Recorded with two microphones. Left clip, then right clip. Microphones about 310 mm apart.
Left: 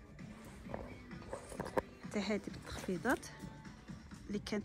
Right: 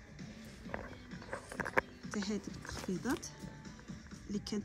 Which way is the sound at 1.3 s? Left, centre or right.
Centre.